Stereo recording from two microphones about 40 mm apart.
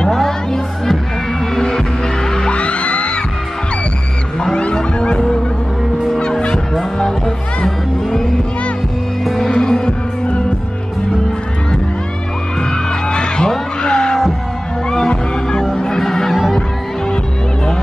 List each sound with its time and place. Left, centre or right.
0.0 s music: centre
2.3 s music: left
4.6 s music: left
6.1 s fowl: left
7.0 s music: centre
9.5 s music: centre
13.1 s music: left
15.7 s music: left
16.0 s music: centre